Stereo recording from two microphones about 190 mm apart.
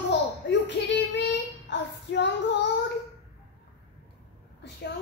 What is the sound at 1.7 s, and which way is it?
Child singing, 70° left (ahead or behind).